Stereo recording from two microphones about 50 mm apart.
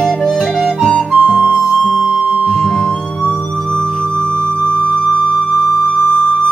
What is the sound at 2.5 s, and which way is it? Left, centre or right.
Music, centre.